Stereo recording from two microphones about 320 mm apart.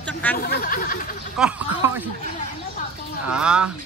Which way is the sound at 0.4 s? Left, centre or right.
Left.